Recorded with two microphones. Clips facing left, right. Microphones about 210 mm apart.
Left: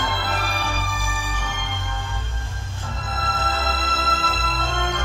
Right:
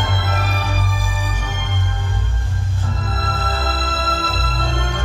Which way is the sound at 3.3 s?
35° right (ahead or behind).